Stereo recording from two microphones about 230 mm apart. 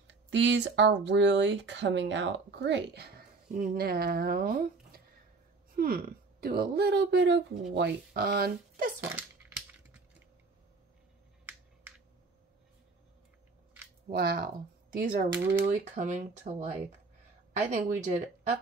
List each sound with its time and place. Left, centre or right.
0.0 s speech: right
9.0 s a sound: centre
14.1 s speech: right
15.3 s speech: centre
15.7 s speech: right
17.6 s speech: right